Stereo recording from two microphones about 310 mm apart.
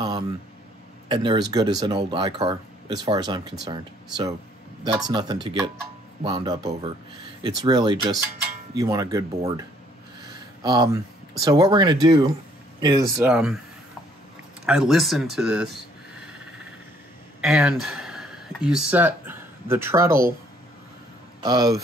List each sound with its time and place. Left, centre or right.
1.0 s speech: centre
14.7 s speech: centre
17.4 s speech: centre
21.4 s speech: centre